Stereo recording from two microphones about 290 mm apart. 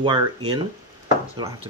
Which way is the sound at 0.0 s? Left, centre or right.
Centre.